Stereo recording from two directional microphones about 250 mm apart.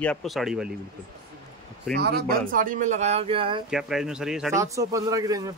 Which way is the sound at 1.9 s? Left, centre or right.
Right.